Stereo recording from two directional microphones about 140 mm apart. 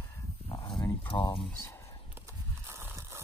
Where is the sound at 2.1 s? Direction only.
15° right (ahead or behind).